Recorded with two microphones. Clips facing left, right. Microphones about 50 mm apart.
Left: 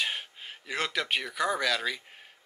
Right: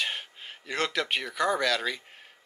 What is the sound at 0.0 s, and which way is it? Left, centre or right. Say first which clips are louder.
Speech: even; centre.